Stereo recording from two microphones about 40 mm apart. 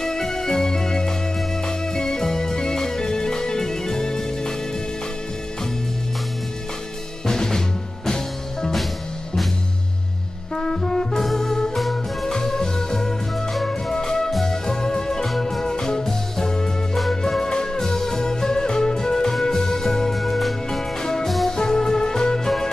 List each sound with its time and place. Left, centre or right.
0.0 s music: centre
7.2 s drum: centre
10.5 s music: centre
15.2 s music: centre
21.0 s music: centre